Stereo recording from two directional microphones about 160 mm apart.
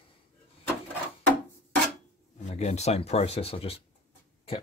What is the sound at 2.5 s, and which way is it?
Speech, 45° left (ahead or behind).